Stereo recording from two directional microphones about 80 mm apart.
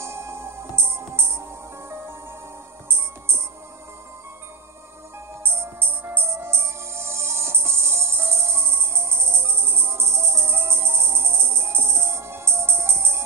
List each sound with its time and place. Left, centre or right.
0.0 s music: right
5.4 s music: right